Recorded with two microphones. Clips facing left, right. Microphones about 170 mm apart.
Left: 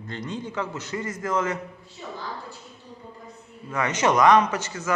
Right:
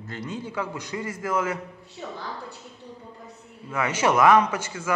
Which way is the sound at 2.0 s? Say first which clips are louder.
Right 1 dB; 50° right (ahead or behind).